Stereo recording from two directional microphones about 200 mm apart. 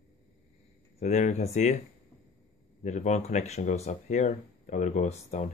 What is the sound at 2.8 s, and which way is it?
Speech, 35° left (ahead or behind).